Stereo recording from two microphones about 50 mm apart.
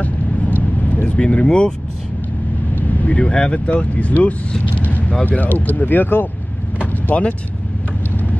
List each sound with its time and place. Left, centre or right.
0.0 s vehicle: left
1.1 s speech: left
2.7 s speech: left
6.8 s vehicle: left